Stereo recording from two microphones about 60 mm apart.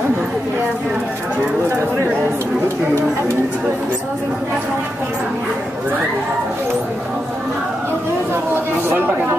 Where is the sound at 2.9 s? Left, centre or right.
Right.